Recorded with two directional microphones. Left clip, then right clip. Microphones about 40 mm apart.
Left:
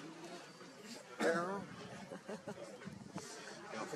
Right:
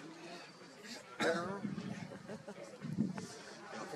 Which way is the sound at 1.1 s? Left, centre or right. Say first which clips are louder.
Even; right.